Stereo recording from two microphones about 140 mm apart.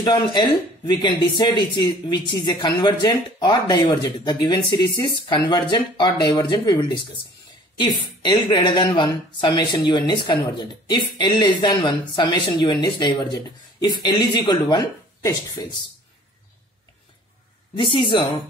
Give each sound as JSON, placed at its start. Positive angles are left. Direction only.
{"t": 0.0, "sound": "speech", "side_deg": 30}
{"t": 8.2, "sound": "speech", "side_deg": 30}